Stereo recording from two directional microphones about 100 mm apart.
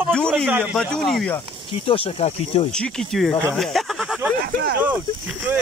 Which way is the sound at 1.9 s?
75° left (ahead or behind).